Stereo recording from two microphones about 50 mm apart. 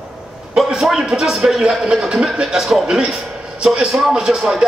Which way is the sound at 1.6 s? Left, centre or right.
Centre.